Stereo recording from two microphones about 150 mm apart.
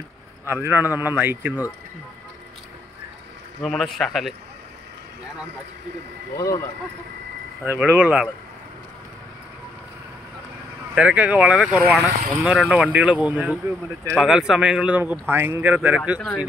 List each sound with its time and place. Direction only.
0.5 s speech: 15° right (ahead or behind)
3.6 s speech: centre (ahead or behind)
6.3 s speech: 20° left (ahead or behind)
7.6 s speech: 15° right (ahead or behind)
11.0 s speech: 10° right (ahead or behind)